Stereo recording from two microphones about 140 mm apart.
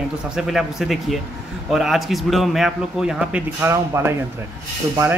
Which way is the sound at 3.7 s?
20° right (ahead or behind).